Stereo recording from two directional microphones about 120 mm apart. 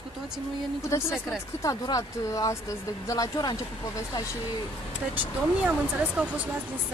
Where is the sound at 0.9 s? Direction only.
25° left (ahead or behind).